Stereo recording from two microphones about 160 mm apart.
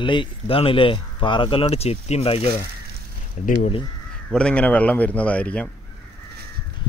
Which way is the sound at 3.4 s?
50° left (ahead or behind).